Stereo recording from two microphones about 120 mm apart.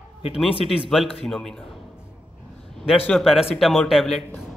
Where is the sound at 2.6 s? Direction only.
5° left (ahead or behind).